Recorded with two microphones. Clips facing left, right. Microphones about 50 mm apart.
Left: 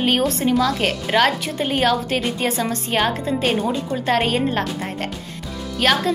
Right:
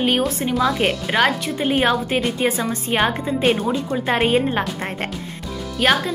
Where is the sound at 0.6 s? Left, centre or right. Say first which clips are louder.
Right 1 dB; centre.